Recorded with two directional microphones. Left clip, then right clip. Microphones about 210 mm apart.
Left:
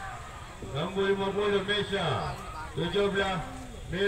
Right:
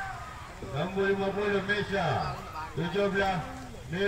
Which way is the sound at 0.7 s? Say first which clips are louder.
Even; 45° right (ahead or behind).